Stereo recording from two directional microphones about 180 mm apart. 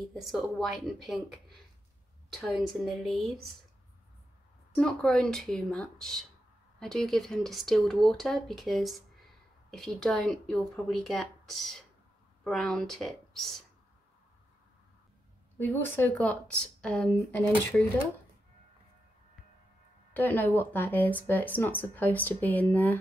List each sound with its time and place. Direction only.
0.1 s speech: centre (ahead or behind)
4.7 s speech: 5° left (ahead or behind)
15.6 s speech: 10° left (ahead or behind)
20.2 s speech: 10° left (ahead or behind)